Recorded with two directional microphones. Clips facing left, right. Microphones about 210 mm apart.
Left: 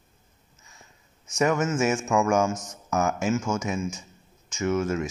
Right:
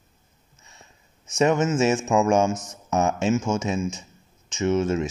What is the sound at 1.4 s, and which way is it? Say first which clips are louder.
Speech: right 3 dB; 25° right (ahead or behind).